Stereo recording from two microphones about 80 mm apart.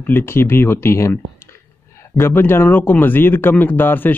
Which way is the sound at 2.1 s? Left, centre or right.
Left.